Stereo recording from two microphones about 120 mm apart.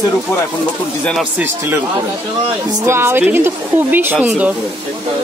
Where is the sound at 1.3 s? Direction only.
20° right (ahead or behind).